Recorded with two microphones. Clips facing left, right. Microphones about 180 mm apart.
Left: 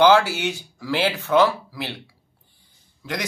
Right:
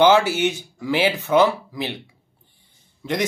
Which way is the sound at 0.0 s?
20° right (ahead or behind).